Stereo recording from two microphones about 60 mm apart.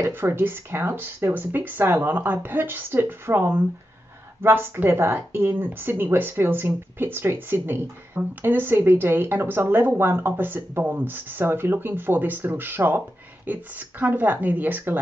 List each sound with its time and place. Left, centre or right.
0.1 s speech: right
13.5 s speech: right